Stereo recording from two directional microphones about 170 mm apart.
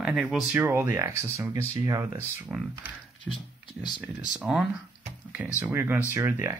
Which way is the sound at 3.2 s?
25° left (ahead or behind).